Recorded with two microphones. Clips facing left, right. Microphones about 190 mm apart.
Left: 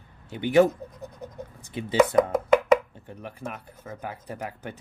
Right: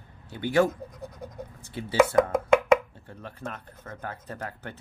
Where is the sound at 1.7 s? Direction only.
15° left (ahead or behind).